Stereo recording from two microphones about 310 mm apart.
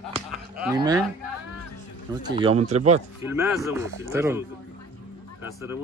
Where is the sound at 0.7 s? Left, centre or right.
Centre.